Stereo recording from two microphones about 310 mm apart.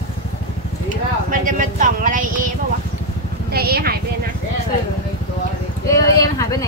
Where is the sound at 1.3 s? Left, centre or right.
Right.